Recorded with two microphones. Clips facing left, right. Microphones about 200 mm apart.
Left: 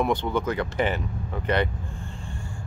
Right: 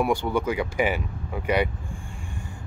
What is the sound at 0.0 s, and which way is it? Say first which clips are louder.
Speech: right 1 dB; 10° right (ahead or behind).